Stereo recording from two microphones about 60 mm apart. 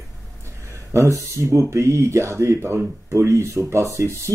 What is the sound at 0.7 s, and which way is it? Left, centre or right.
Speech, right.